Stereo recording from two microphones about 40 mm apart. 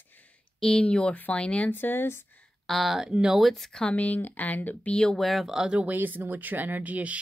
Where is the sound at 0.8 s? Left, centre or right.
Left.